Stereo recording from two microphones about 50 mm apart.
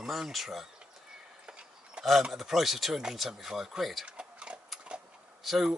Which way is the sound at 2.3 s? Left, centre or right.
Centre.